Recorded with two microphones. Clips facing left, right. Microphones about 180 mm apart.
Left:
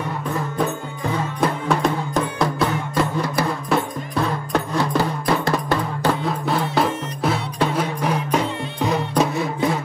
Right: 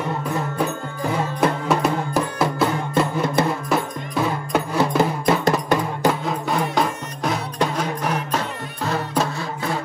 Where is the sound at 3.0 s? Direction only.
25° right (ahead or behind).